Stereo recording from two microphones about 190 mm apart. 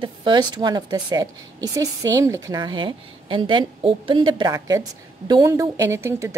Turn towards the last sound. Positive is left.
turn(degrees=-15)  # may be behind; listen again after turning